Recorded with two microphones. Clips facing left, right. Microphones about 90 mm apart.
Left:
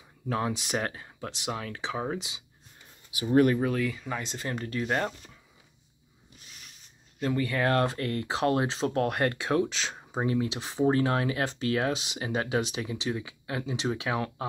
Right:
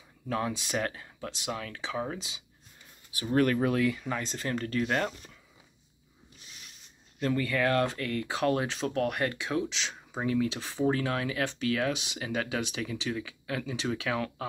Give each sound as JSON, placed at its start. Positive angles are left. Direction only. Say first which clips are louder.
{"t": 0.3, "sound": "speech", "louder": "left 2 dB", "side_deg": 25}
{"t": 3.5, "sound": "speech", "louder": "right 1 dB", "side_deg": 0}
{"t": 7.2, "sound": "speech", "louder": "even", "side_deg": 20}